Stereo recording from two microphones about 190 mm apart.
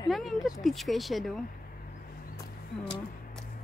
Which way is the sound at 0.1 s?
Centre (ahead or behind).